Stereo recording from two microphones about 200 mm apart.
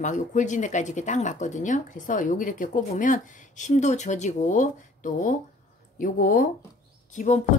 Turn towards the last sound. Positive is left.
turn(degrees=35)  # may be behind; listen again after turning